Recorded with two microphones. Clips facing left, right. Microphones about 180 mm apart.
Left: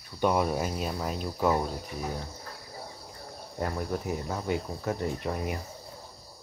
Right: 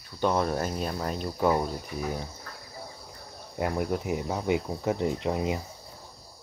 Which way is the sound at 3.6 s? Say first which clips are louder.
Right 3 dB; 15° right (ahead or behind).